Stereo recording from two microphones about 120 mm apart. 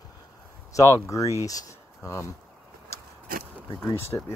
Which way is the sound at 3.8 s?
20° left (ahead or behind).